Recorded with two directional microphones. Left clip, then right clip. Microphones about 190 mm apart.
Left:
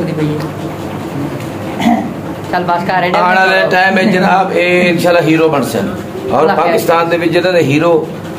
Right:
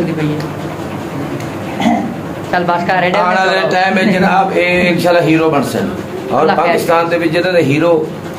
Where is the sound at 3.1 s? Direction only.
35° left (ahead or behind); by 5.8 s 15° left (ahead or behind).